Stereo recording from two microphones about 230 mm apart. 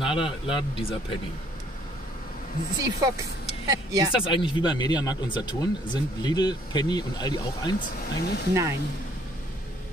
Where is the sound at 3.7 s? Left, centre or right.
Centre.